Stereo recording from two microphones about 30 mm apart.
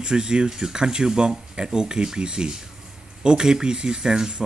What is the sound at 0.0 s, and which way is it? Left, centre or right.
Speech, right.